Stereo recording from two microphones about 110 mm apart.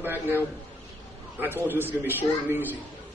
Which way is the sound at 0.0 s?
20° right (ahead or behind).